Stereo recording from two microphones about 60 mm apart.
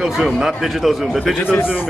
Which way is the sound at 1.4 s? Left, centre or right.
Left.